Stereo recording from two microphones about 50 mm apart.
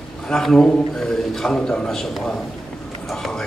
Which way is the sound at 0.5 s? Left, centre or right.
Left.